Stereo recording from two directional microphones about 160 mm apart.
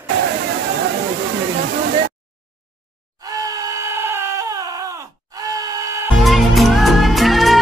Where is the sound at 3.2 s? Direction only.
20° right (ahead or behind).